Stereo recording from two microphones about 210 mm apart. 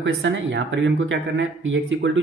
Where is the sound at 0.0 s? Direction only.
60° right (ahead or behind).